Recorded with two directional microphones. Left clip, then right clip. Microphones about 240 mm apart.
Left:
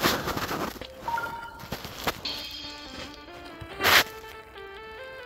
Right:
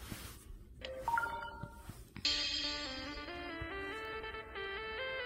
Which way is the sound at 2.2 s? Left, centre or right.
Right.